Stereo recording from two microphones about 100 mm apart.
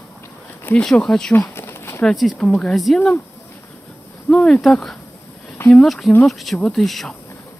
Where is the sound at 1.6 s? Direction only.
25° left (ahead or behind).